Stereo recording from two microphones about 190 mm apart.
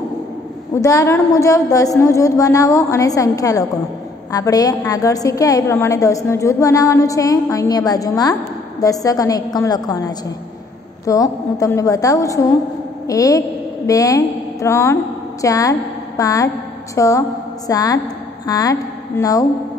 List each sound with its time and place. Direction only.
0.7 s a woman's voice: 15° left (ahead or behind)